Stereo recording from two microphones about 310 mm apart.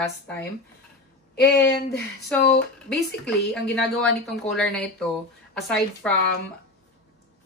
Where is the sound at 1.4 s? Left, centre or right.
Left.